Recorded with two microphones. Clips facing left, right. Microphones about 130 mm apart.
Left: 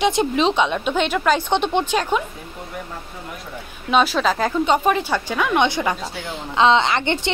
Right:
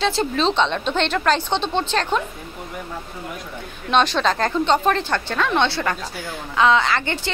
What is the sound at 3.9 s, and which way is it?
A woman's voice, 5° left (ahead or behind).